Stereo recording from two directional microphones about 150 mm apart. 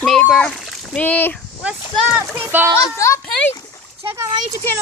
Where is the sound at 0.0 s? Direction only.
5° left (ahead or behind).